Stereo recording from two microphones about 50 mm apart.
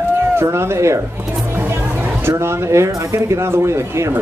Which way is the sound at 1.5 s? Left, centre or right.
Right.